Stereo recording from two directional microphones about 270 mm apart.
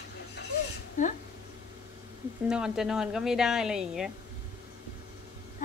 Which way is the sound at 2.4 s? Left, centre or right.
Centre.